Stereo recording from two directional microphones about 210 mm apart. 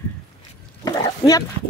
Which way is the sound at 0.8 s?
15° left (ahead or behind).